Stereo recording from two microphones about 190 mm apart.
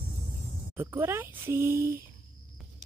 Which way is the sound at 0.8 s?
10° right (ahead or behind).